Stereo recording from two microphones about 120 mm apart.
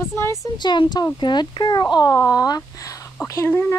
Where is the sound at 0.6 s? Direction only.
40° left (ahead or behind); by 3.7 s 20° left (ahead or behind).